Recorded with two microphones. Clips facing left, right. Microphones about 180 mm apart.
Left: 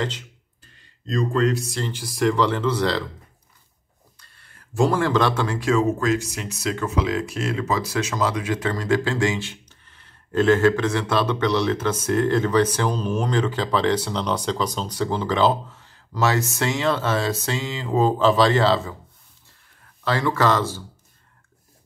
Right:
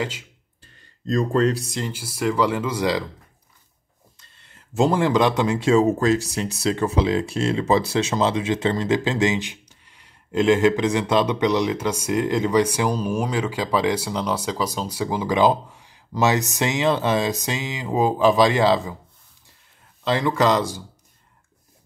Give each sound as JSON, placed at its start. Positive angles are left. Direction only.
{"t": 1.0, "sound": "speech", "side_deg": -40}
{"t": 1.9, "sound": "speech", "side_deg": -5}
{"t": 4.2, "sound": "speech", "side_deg": -20}
{"t": 20.1, "sound": "speech", "side_deg": -20}